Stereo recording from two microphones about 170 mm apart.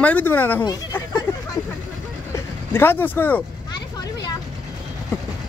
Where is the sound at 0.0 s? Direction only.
10° left (ahead or behind).